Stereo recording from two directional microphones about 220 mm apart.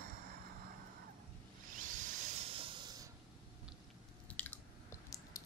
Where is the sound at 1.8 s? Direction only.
35° right (ahead or behind).